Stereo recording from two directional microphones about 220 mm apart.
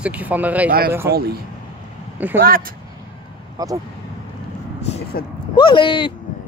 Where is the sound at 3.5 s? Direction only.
15° right (ahead or behind).